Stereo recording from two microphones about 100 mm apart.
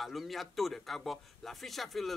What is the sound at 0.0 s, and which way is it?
A man's voice, centre (ahead or behind).